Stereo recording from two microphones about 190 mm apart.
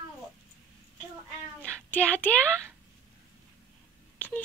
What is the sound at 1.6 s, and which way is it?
Child singing, 10° left (ahead or behind).